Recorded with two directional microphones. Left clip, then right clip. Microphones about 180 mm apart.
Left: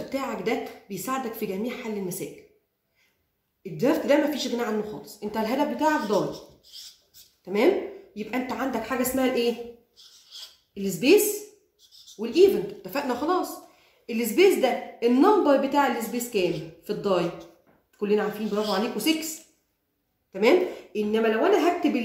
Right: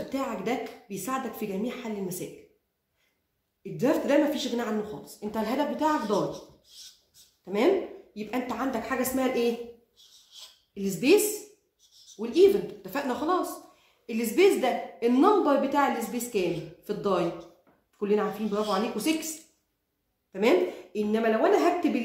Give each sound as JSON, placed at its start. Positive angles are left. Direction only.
{"t": 0.1, "sound": "a woman's voice", "side_deg": -20}
{"t": 3.7, "sound": "a woman's voice", "side_deg": -20}
{"t": 8.1, "sound": "a woman's voice", "side_deg": -15}
{"t": 10.7, "sound": "a woman's voice", "side_deg": -10}
{"t": 12.2, "sound": "a woman's voice", "side_deg": -10}
{"t": 20.3, "sound": "a woman's voice", "side_deg": -20}